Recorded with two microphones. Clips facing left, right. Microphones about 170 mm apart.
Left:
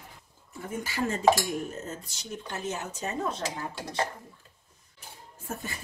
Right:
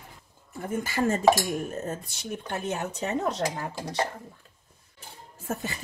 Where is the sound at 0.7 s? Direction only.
50° right (ahead or behind); by 3.4 s 75° right (ahead or behind).